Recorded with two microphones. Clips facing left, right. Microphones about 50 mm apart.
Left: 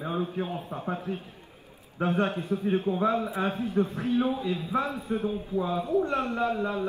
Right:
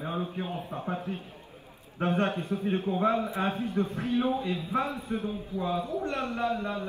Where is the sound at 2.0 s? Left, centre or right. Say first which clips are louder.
Left 1 dB; right.